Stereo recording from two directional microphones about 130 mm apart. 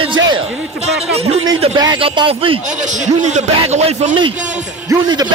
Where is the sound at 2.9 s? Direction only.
65° right (ahead or behind).